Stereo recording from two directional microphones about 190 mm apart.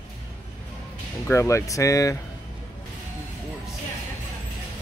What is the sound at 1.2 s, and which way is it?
Speech, 15° left (ahead or behind).